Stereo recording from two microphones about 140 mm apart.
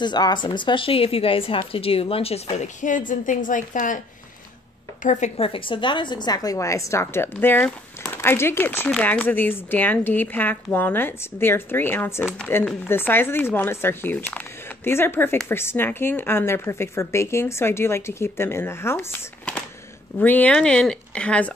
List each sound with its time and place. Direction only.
0.0 s speech: 30° left (ahead or behind); by 4.0 s 65° left (ahead or behind)
5.0 s a woman's voice: 60° left (ahead or behind)
5.4 s a woman's voice: 40° left (ahead or behind); by 21.5 s 10° left (ahead or behind)